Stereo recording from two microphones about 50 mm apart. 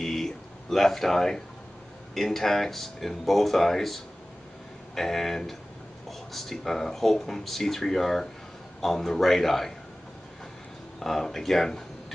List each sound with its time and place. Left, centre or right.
0.0 s a sound: centre
2.1 s a man's voice: centre
11.0 s a man's voice: centre